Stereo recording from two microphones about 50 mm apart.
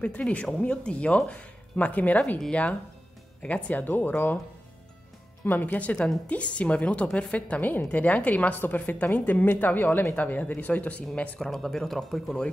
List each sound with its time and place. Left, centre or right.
0.0 s speech: left
3.4 s speech: left
3.8 s a woman's voice: left
5.4 s a woman's voice: left
7.6 s a woman's voice: left
11.3 s speech: centre